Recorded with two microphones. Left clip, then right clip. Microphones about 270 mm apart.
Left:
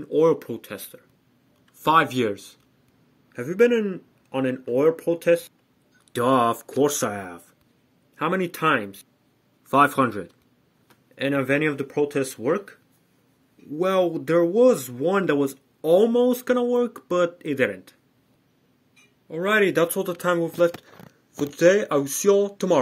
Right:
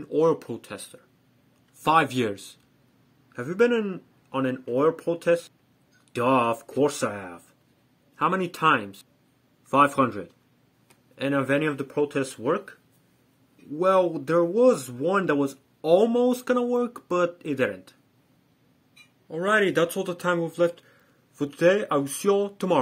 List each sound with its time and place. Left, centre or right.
0.0 s speech: centre
13.7 s speech: centre
19.2 s speech: centre